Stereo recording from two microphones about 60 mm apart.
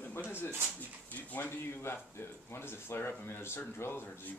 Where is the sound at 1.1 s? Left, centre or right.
Left.